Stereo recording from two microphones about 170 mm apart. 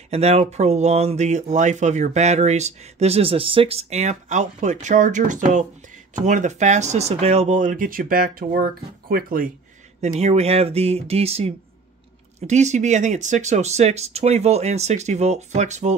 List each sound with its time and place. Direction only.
0.1 s speech: 40° right (ahead or behind); by 9.5 s 55° right (ahead or behind)
10.0 s speech: 40° right (ahead or behind)